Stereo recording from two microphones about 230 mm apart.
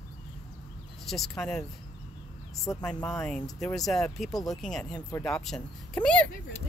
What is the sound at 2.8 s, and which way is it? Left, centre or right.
Speech, centre.